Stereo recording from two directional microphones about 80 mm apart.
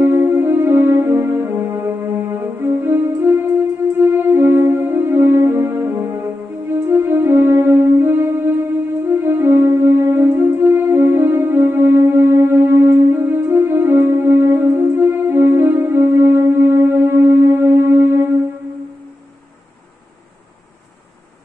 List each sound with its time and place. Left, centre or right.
0.0 s music: right